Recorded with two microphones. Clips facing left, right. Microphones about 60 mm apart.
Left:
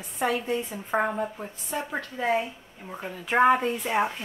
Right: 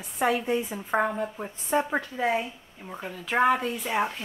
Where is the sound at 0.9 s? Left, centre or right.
Centre.